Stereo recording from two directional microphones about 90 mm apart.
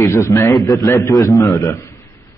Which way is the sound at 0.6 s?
45° left (ahead or behind).